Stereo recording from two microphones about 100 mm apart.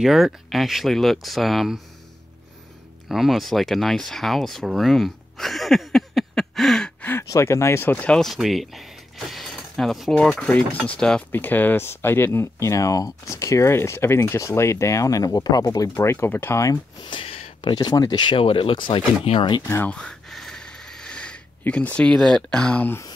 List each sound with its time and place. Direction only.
0.0 s speech: 5° right (ahead or behind)
3.1 s speech: centre (ahead or behind)
7.2 s speech: 30° left (ahead or behind)
8.0 s speech: 10° left (ahead or behind)
8.3 s speech: centre (ahead or behind); by 15.9 s 40° left (ahead or behind)
15.9 s speech: 30° left (ahead or behind)
17.1 s a sound: 60° left (ahead or behind)
17.7 s speech: 40° left (ahead or behind)
18.2 s speech: 60° left (ahead or behind)
19.9 s a sound: 10° left (ahead or behind)